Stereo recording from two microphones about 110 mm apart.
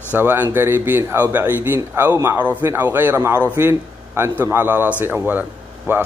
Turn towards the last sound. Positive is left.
turn(degrees=-20)  # may be behind; listen again after turning